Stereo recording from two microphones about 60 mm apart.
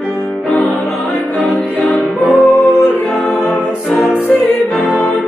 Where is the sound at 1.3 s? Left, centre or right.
Left.